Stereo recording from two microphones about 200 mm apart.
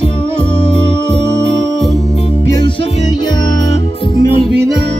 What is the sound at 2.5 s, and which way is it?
Music, 20° left (ahead or behind).